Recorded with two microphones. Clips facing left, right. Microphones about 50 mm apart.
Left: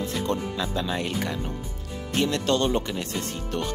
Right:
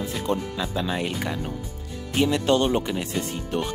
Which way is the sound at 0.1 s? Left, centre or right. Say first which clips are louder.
Right 1 dB; centre.